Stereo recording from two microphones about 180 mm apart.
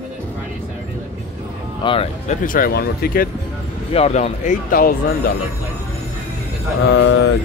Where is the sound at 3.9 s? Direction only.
35° left (ahead or behind).